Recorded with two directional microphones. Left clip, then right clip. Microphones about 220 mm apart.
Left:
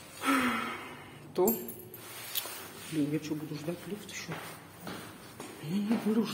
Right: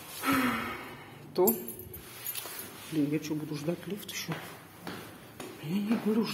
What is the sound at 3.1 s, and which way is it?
Speech, 15° right (ahead or behind).